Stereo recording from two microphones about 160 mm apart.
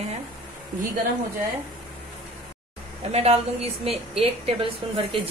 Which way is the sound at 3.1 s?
40° right (ahead or behind).